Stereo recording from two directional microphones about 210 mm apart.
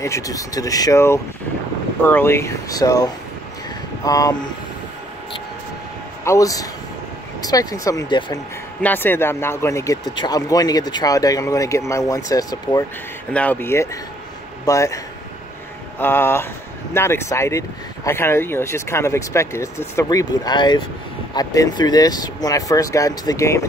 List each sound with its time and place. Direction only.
0.0 s speech: 15° left (ahead or behind)
6.2 s speech: 15° left (ahead or behind)
8.8 s speech: 10° left (ahead or behind)
16.0 s speech: 10° left (ahead or behind)